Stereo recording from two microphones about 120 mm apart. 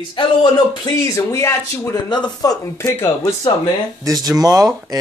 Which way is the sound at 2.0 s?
35° left (ahead or behind).